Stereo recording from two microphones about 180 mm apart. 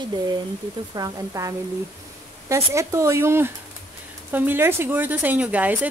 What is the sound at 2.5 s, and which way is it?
Speech, 15° right (ahead or behind).